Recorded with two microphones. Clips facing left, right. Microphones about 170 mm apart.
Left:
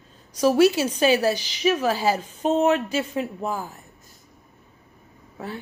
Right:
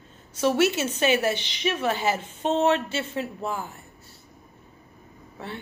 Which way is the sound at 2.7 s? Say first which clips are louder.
Left 2 dB; 30° right (ahead or behind).